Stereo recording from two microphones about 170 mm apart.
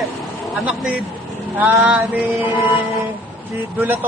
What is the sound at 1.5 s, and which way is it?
Mantra, 10° right (ahead or behind).